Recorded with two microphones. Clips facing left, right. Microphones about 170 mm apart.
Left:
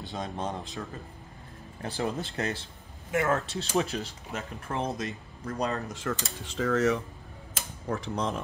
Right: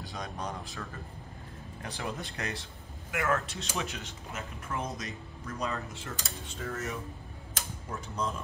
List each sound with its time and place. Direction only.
0.1 s speech: 25° left (ahead or behind)
1.8 s speech: 30° left (ahead or behind)
6.0 s speech: 90° left
7.9 s speech: 80° left